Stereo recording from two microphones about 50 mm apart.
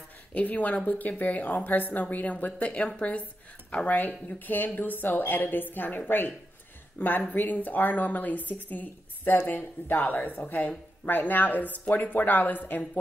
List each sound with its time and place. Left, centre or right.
0.3 s a woman's voice: left